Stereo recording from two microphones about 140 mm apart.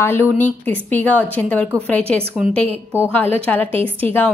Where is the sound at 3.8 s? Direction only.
40° right (ahead or behind).